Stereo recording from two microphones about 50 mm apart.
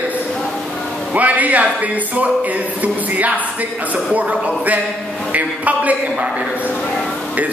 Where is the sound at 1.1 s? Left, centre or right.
Right.